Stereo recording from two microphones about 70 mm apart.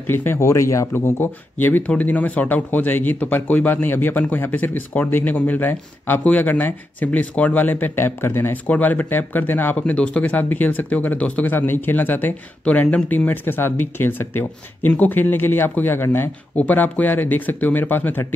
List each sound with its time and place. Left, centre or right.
0.0 s speech: left
0.4 s speech: left
0.9 s a man's voice: left
8.6 s speech: left
9.9 s speech: centre
10.2 s a man's voice: left